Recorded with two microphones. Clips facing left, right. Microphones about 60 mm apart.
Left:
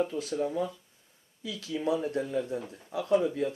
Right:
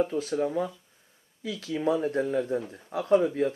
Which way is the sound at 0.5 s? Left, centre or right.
Right.